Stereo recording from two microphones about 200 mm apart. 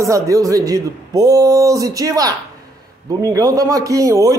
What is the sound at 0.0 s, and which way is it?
Speech, 15° right (ahead or behind).